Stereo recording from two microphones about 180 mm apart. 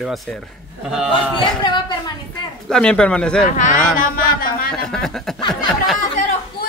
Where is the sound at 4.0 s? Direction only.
55° left (ahead or behind).